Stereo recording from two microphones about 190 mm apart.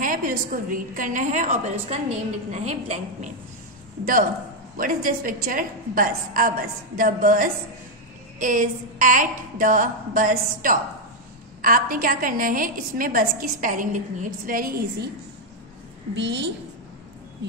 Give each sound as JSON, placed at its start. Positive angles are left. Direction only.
{"t": 0.0, "sound": "a woman's voice", "side_deg": -45}
{"t": 16.2, "sound": "a woman's voice", "side_deg": -65}